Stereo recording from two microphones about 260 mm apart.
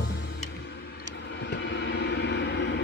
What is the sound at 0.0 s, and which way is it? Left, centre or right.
Music, left.